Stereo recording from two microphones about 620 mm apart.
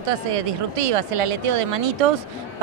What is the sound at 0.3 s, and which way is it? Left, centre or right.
A woman's voice, right.